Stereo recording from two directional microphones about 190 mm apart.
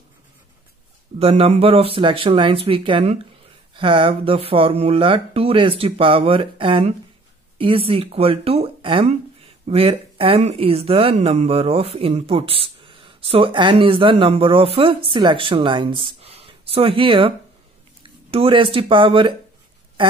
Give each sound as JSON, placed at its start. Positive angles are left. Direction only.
{"t": 1.2, "sound": "speech", "side_deg": -35}